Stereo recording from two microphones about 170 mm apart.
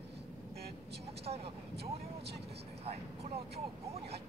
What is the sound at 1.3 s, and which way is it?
Speech, 45° right (ahead or behind).